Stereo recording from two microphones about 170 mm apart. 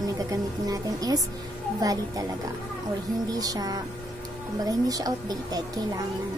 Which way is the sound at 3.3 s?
20° right (ahead or behind).